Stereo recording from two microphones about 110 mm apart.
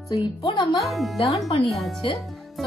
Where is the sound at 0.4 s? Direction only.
50° left (ahead or behind).